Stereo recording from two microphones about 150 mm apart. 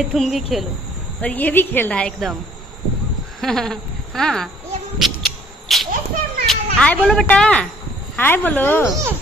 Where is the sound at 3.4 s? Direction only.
Centre (ahead or behind).